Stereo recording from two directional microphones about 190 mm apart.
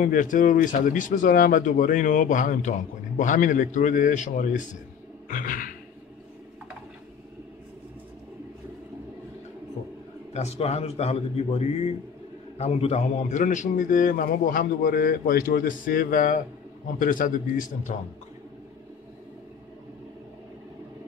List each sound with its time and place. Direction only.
0.0 s a man's voice: 45° left (ahead or behind)
5.3 s a sound: 45° left (ahead or behind)
10.3 s a man's voice: 35° left (ahead or behind)